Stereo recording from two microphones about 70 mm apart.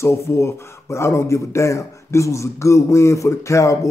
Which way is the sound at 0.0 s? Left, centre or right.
Left.